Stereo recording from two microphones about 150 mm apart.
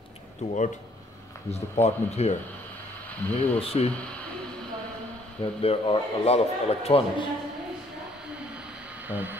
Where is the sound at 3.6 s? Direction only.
40° left (ahead or behind).